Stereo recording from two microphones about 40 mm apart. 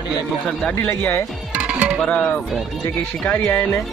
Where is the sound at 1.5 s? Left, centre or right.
Right.